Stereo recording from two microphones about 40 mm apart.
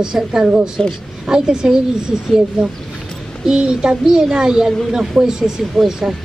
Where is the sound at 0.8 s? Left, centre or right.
Centre.